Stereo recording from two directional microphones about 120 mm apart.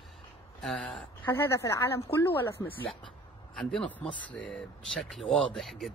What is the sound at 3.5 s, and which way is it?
Speech, 5° left (ahead or behind).